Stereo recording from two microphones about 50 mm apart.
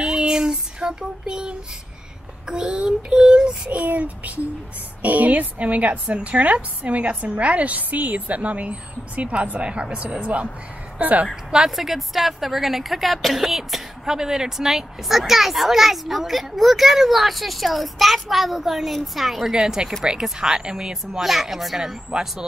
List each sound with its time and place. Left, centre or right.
0.0 s child singing: centre
2.4 s a woman's voice: centre
11.5 s a woman's voice: centre